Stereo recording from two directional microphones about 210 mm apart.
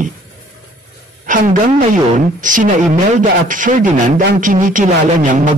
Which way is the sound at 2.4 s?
40° right (ahead or behind).